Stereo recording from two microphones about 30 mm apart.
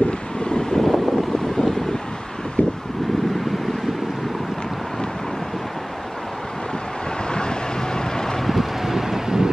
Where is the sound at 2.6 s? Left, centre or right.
Left.